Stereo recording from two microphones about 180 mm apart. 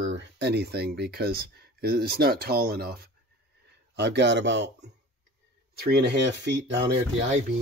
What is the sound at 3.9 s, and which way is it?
Speech, 75° right (ahead or behind).